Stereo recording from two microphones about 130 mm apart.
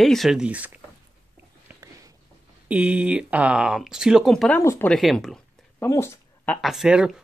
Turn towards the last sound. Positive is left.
turn(degrees=-5)  # may be behind; listen again after turning